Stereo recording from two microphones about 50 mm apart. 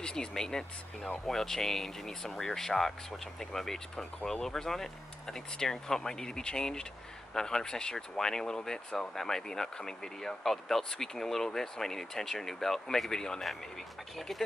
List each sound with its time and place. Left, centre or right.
0.0 s speech: centre
4.0 s speech: left
4.4 s speech: centre